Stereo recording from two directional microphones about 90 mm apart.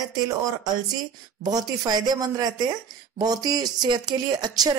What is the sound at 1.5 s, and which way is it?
Speech, 45° right (ahead or behind).